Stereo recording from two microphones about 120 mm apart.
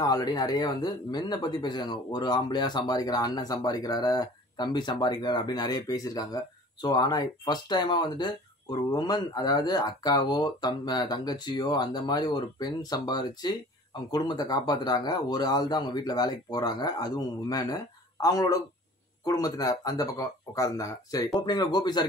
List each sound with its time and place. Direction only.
0.0 s speech: 35° left (ahead or behind)